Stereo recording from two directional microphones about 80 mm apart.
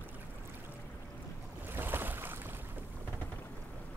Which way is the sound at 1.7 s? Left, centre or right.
Right.